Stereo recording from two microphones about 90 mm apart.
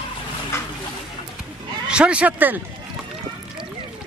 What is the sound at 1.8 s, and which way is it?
Speech, 10° right (ahead or behind).